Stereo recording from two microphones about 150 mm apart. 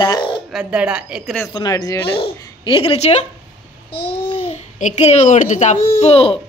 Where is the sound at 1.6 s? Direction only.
25° left (ahead or behind).